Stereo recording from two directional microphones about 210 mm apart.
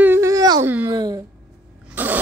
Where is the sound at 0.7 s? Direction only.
15° right (ahead or behind).